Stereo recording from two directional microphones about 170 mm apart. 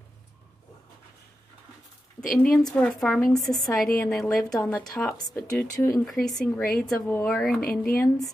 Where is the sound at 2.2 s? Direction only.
5° left (ahead or behind).